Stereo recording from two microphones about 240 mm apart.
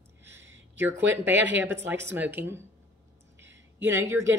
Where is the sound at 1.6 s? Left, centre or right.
Centre.